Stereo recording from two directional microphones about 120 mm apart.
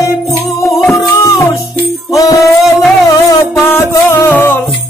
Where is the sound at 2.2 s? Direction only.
30° left (ahead or behind).